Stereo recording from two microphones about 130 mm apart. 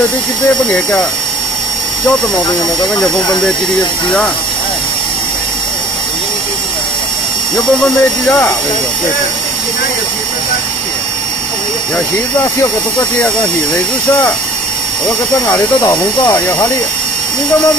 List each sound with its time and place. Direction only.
7.5 s speech: 10° left (ahead or behind)
15.5 s speech: 20° left (ahead or behind)